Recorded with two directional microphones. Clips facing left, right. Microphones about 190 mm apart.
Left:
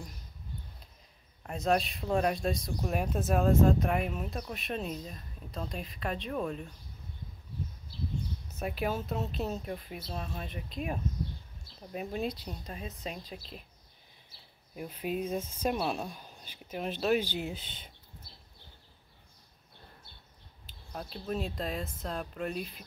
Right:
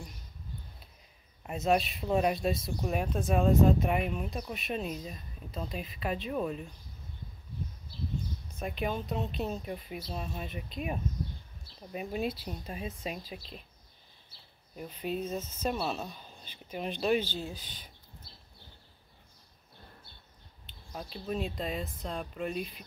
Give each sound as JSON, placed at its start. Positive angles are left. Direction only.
{"t": 1.4, "sound": "speech", "side_deg": -5}
{"t": 8.5, "sound": "speech", "side_deg": 5}
{"t": 14.8, "sound": "speech", "side_deg": 5}
{"t": 17.2, "sound": "speech", "side_deg": 15}
{"t": 20.6, "sound": "speech", "side_deg": 0}